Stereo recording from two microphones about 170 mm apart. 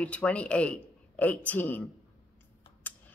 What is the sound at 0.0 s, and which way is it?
A woman's voice, 5° left (ahead or behind).